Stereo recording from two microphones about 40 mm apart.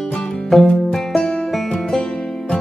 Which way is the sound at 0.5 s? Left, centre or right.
Centre.